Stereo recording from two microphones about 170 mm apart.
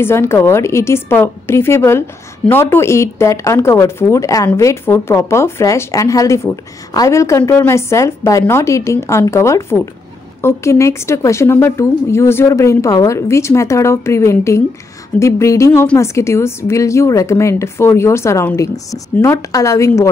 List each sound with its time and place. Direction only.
0.0 s a woman's voice: 15° left (ahead or behind)